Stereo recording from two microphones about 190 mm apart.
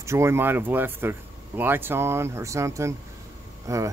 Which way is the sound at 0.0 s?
15° right (ahead or behind).